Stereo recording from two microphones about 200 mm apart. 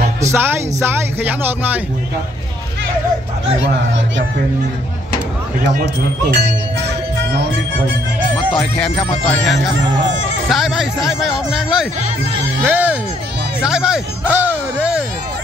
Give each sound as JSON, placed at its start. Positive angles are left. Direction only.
{"t": 0.2, "sound": "speech", "side_deg": -10}
{"t": 6.3, "sound": "music", "side_deg": -55}
{"t": 8.5, "sound": "speech", "side_deg": 0}
{"t": 12.6, "sound": "music", "side_deg": -10}
{"t": 13.6, "sound": "speech", "side_deg": -5}